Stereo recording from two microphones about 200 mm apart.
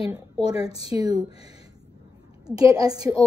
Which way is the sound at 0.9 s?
20° right (ahead or behind).